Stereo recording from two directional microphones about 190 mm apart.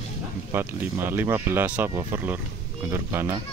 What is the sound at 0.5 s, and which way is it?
Speech, 10° right (ahead or behind).